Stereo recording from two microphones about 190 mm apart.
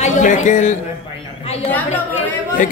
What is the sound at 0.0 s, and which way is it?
Speech, 40° left (ahead or behind).